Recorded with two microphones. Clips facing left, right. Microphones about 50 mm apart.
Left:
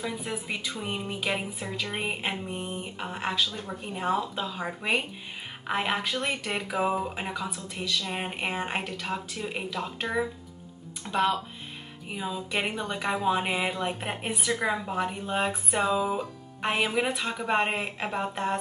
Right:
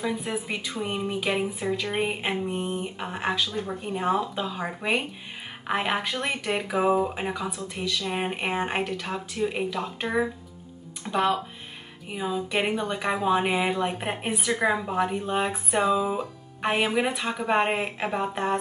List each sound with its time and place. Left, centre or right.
0.0 s speech: centre
0.8 s speech: centre
3.8 s speech: centre
10.0 s speech: centre
11.1 s speech: centre
12.1 s speech: centre